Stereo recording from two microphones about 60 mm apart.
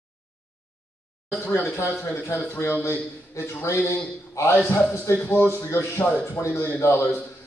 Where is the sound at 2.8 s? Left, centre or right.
Left.